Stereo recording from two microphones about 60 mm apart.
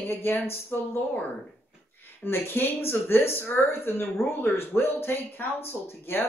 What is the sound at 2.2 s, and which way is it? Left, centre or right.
A woman's voice, left.